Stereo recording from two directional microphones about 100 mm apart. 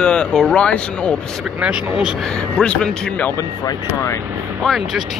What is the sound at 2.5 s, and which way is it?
Speech, 10° left (ahead or behind).